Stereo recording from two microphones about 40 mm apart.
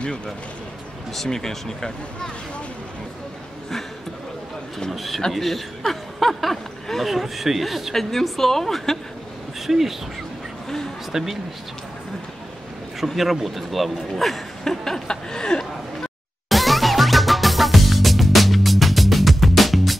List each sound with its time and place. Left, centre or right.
1.1 s speech: centre
4.9 s a man's voice: centre
9.7 s a man's voice: centre
11.1 s speech: centre
13.0 s a man's voice: centre
14.6 s chuckle: centre
16.4 s music: centre